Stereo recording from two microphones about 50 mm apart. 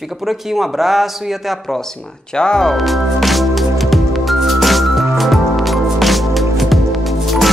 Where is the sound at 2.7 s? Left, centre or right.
Centre.